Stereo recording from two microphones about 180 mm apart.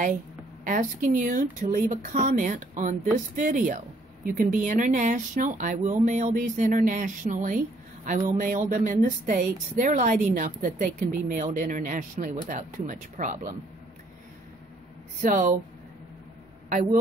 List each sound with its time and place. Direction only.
0.7 s speech: 45° right (ahead or behind)
15.1 s speech: 45° right (ahead or behind)
16.6 s speech: 45° right (ahead or behind)